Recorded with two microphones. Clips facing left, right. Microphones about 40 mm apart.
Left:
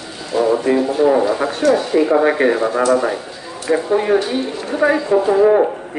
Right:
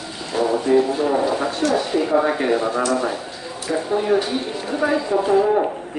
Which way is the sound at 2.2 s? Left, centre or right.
Left.